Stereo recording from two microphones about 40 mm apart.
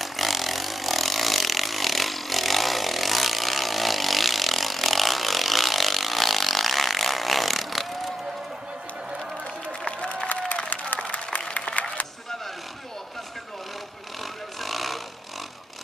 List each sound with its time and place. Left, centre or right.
0.0 s vehicle: centre
9.8 s applause: left
10.2 s applause: left
11.7 s a sound: left
14.6 s vehicle: centre